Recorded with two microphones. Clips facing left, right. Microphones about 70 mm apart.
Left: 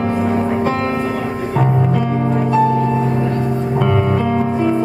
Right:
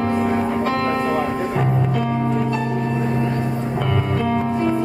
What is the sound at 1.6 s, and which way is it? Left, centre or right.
Music, centre.